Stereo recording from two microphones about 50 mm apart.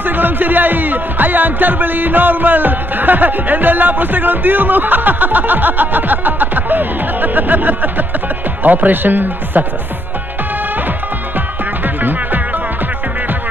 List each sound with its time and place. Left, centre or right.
0.0 s speech: right
11.3 s music: right